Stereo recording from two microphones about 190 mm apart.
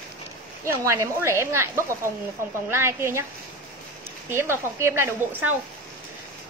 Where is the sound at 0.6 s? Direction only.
15° right (ahead or behind).